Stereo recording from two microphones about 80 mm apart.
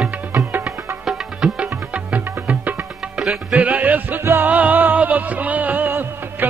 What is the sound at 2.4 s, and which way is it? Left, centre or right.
Music, right.